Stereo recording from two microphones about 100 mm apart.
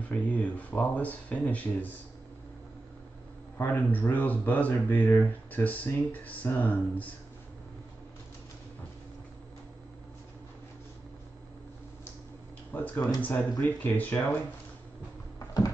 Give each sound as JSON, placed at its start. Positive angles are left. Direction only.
{"t": 0.1, "sound": "speech", "side_deg": 15}
{"t": 3.5, "sound": "speech", "side_deg": 20}
{"t": 12.7, "sound": "speech", "side_deg": 20}
{"t": 15.3, "sound": "a sound", "side_deg": 40}